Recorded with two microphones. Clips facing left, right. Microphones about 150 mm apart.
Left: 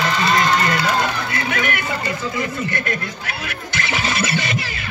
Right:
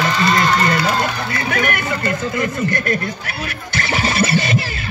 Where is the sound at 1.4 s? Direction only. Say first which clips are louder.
Right 4 dB; 45° right (ahead or behind).